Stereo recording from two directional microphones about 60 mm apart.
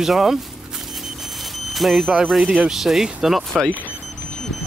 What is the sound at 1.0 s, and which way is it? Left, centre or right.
Smoke detector, centre.